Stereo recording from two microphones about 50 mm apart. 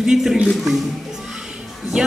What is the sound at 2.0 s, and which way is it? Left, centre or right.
Speech, centre.